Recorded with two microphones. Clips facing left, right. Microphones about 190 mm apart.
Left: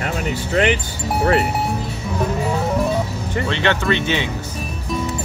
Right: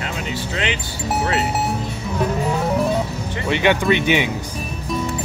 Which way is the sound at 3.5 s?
15° right (ahead or behind).